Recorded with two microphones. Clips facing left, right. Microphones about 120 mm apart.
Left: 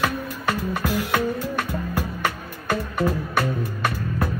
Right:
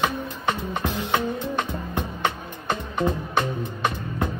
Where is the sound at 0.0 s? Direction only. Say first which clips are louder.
Even; 20° right (ahead or behind).